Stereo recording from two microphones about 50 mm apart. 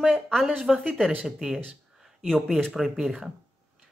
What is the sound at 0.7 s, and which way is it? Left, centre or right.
Speech, centre.